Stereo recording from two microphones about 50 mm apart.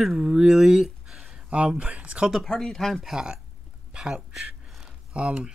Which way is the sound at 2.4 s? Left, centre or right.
Centre.